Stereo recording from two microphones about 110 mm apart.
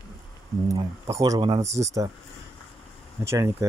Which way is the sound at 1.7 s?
30° right (ahead or behind).